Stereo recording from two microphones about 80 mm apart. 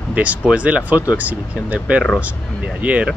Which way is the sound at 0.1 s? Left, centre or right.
Centre.